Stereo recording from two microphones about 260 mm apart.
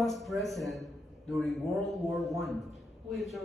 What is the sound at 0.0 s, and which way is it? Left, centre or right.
A man's voice, centre.